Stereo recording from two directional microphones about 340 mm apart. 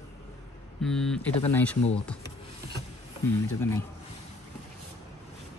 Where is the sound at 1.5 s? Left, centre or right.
Centre.